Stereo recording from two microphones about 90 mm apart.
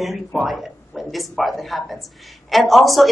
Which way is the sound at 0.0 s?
Centre (ahead or behind).